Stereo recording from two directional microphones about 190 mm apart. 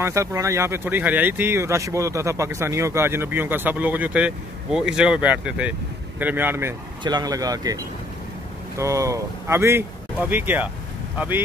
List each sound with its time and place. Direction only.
0.0 s speech: 15° right (ahead or behind)
7.0 s speech: 20° right (ahead or behind)